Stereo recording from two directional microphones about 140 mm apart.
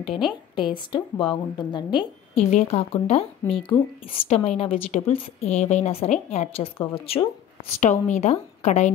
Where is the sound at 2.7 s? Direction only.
45° left (ahead or behind).